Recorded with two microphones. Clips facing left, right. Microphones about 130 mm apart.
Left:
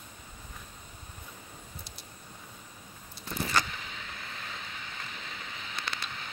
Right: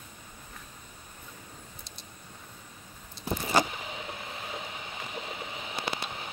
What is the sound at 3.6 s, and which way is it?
Vehicle, 20° right (ahead or behind).